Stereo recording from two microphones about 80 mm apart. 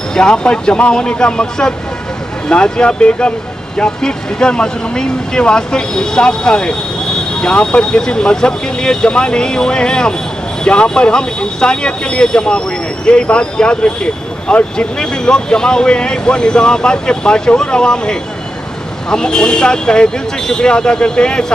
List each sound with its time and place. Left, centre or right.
0.1 s speech: centre